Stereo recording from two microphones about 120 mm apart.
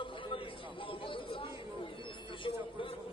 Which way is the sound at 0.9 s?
45° left (ahead or behind).